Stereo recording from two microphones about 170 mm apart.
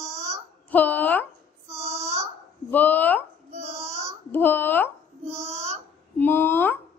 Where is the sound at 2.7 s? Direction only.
10° left (ahead or behind).